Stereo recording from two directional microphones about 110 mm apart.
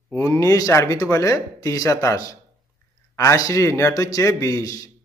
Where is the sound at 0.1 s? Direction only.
25° left (ahead or behind).